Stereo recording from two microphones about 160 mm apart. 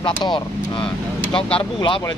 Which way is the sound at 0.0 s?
30° left (ahead or behind).